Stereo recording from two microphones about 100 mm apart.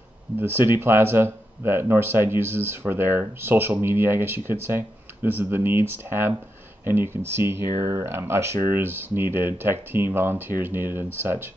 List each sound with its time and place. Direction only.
0.4 s speech: 20° right (ahead or behind)